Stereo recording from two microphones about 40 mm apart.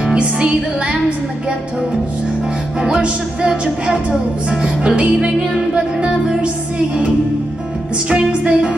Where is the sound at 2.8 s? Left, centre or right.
Right.